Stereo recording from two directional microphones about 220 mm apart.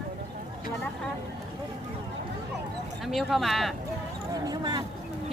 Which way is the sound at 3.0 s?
Centre (ahead or behind).